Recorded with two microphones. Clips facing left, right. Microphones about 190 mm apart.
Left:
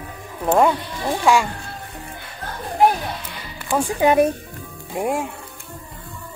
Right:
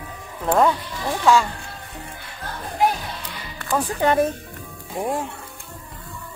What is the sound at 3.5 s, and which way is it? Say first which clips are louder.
Music: left 2 dB; 10° left (ahead or behind).